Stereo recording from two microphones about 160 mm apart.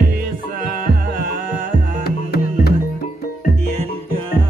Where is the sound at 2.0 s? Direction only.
80° left.